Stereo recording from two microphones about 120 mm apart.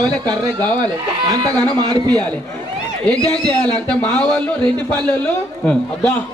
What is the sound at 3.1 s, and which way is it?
Speech, 5° left (ahead or behind).